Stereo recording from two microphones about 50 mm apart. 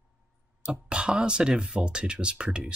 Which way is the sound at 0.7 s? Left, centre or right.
Right.